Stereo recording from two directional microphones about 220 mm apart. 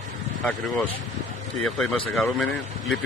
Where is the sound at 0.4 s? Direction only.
5° left (ahead or behind).